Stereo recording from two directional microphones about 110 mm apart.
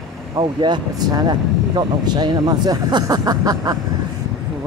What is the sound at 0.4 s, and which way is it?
Speech, 40° right (ahead or behind).